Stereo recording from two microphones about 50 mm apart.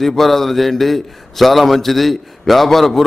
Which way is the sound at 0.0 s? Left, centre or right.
Centre.